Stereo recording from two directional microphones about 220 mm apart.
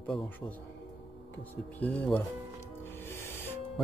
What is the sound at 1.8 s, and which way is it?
Speech, 5° left (ahead or behind).